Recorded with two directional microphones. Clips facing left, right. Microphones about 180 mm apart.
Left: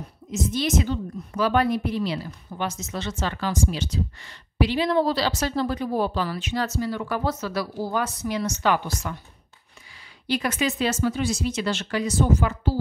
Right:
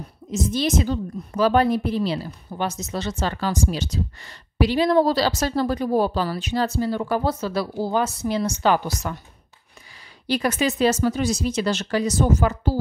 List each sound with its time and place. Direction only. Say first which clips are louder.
0.3 s speech: right 2 dB; 35° right (ahead or behind)
10.2 s speech: right 3 dB; 35° right (ahead or behind)